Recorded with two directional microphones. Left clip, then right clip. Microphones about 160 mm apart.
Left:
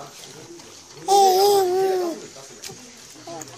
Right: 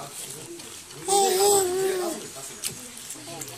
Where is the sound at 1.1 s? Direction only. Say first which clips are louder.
Left 6 dB; 60° left (ahead or behind).